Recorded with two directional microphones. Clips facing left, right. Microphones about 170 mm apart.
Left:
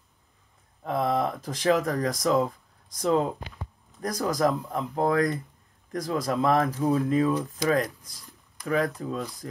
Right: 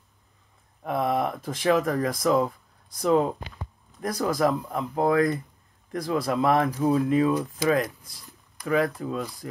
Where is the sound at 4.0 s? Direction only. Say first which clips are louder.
Right 1 dB; 40° left (ahead or behind).